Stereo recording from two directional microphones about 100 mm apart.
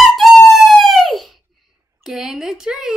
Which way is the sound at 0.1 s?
Centre (ahead or behind).